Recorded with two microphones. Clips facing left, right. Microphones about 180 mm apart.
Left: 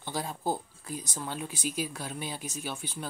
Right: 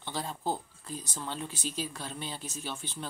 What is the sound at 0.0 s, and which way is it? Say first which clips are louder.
Speech: left 2 dB; 10° left (ahead or behind).